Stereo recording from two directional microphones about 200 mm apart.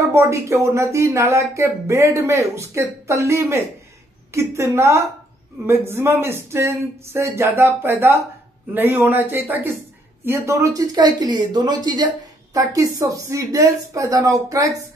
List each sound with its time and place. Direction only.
0.0 s speech: 15° right (ahead or behind)